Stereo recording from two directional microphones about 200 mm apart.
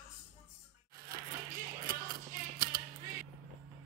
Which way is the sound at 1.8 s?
45° right (ahead or behind).